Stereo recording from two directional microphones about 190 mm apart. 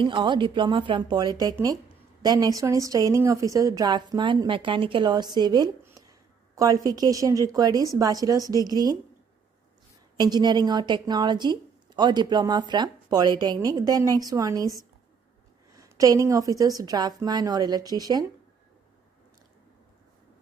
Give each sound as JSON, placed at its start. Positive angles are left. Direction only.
{"t": 0.0, "sound": "a woman's voice", "side_deg": -25}
{"t": 10.1, "sound": "a woman's voice", "side_deg": -20}
{"t": 15.7, "sound": "a woman's voice", "side_deg": -20}